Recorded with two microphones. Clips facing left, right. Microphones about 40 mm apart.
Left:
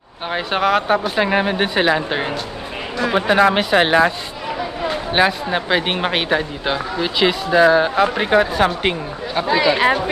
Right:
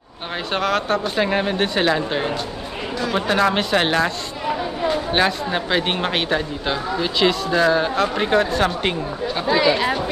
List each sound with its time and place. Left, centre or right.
0.3 s speech: centre
5.1 s speech: centre